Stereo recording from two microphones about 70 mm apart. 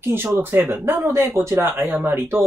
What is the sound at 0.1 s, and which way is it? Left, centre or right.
Speech, right.